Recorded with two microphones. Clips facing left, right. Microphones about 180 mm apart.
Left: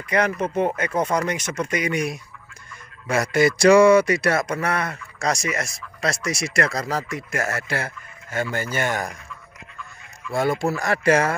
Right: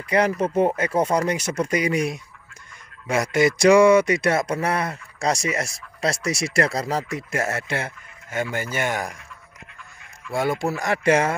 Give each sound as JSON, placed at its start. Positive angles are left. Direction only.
{"t": 0.1, "sound": "speech", "side_deg": -35}
{"t": 3.1, "sound": "speech", "side_deg": -15}
{"t": 10.3, "sound": "speech", "side_deg": -15}